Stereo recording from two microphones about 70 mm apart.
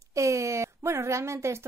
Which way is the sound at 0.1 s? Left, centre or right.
Right.